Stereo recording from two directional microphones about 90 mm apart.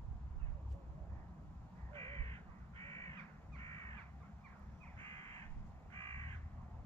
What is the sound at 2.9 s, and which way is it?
Crow, 35° left (ahead or behind).